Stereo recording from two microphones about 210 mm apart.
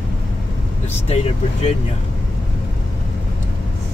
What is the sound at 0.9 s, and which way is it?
Speech, 30° left (ahead or behind).